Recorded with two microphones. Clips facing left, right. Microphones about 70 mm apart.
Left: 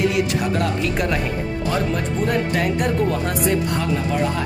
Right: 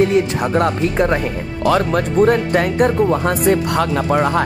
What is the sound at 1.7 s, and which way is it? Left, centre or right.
Speech, right.